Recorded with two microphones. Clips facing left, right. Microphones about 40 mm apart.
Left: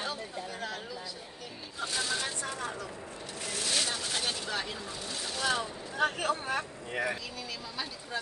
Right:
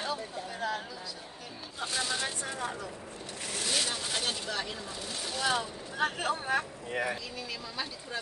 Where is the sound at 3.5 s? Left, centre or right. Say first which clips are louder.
Even; centre.